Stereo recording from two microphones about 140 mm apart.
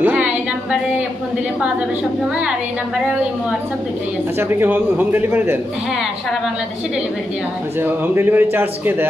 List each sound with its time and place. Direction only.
0.0 s music: 10° right (ahead or behind)
4.4 s a man's voice: 15° right (ahead or behind)
7.8 s a man's voice: 15° right (ahead or behind)